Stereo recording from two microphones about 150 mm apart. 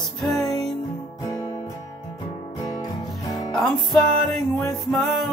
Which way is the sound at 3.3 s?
Centre (ahead or behind).